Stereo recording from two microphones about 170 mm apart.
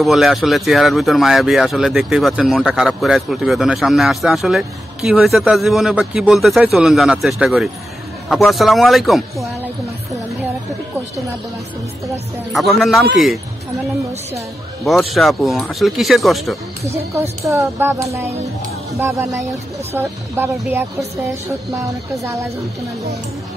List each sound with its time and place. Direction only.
0.0 s speech: centre (ahead or behind)
12.5 s speech: centre (ahead or behind)
14.9 s speech: centre (ahead or behind)
16.8 s speech: 15° right (ahead or behind)
22.2 s speech: 15° right (ahead or behind)